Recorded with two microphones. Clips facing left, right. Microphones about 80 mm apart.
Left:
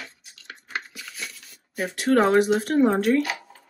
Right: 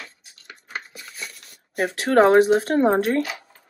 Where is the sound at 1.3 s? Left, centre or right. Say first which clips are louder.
Right 5 dB; right.